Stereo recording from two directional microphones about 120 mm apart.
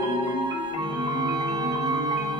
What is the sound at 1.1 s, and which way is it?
Music, 35° right (ahead or behind).